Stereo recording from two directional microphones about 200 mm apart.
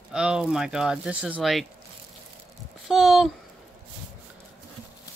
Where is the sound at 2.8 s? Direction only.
Centre (ahead or behind).